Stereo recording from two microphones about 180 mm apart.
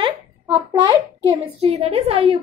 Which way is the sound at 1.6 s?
35° right (ahead or behind).